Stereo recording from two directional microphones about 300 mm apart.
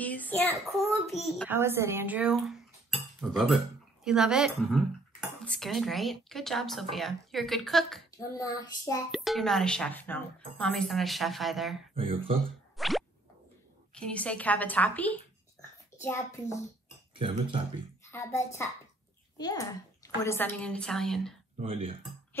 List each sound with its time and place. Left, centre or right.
0.0 s speech: centre
8.4 s child singing: centre
9.1 s speech: centre
11.9 s speech: centre
12.7 s plop: centre
13.9 s speech: centre
16.0 s child singing: centre
17.1 s speech: centre
18.1 s child singing: centre
19.3 s speech: centre
21.5 s speech: centre